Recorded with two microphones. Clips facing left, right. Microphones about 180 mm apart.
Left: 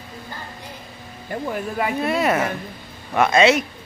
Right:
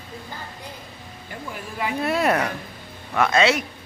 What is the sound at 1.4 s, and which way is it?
Speech, 60° left (ahead or behind).